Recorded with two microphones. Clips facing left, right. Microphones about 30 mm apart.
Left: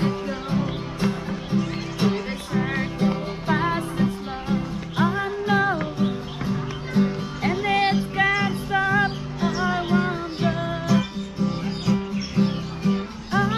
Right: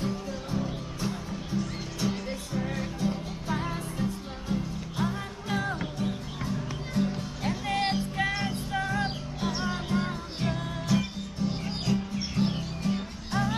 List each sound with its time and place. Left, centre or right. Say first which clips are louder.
0.0 s music: left 7 dB; left